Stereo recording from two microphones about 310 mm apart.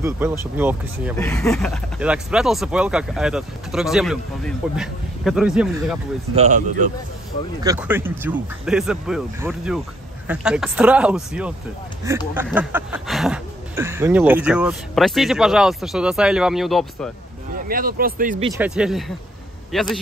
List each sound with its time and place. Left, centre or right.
0.0 s speech: centre
6.3 s speech: right
7.6 s speech: centre
17.6 s speech: right
18.5 s speech: centre